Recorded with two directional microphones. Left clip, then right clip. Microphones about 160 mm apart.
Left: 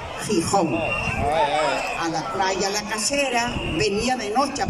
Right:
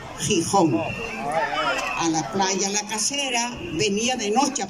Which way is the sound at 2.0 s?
5° left (ahead or behind).